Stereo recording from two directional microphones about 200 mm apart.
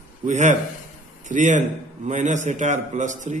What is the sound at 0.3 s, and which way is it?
A man's voice, 35° right (ahead or behind).